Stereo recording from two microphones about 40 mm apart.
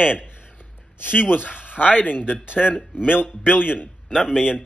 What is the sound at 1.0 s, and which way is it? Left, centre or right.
Speech, left.